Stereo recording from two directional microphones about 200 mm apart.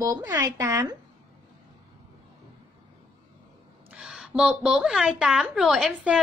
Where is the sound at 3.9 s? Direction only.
Centre (ahead or behind).